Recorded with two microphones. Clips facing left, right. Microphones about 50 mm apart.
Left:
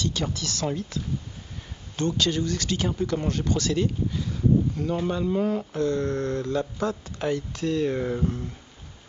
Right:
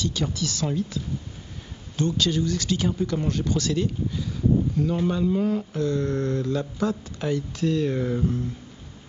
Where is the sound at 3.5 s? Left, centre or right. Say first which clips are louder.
Even; centre.